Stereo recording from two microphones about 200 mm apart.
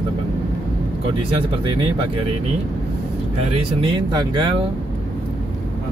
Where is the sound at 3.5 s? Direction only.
20° right (ahead or behind).